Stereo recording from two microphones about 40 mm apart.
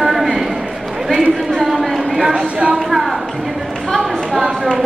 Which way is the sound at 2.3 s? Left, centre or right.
Right.